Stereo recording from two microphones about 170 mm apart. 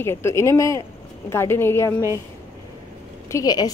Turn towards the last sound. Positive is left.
turn(degrees=20)  # may be behind; listen again after turning